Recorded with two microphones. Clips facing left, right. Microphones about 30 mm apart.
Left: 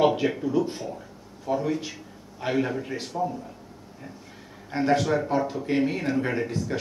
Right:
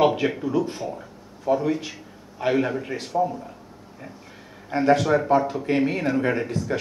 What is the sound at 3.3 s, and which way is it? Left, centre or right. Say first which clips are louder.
Speech: right 2 dB; centre.